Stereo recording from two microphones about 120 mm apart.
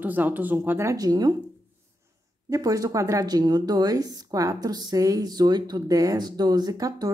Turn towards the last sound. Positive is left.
turn(degrees=-30)  # may be behind; listen again after turning